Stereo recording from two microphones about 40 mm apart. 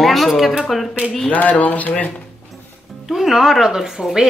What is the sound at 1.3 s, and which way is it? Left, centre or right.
Speech, left.